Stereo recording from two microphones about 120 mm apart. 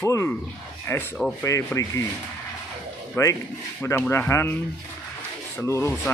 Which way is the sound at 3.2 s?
20° left (ahead or behind).